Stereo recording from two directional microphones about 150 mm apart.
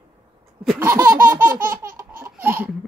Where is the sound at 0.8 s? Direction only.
20° right (ahead or behind).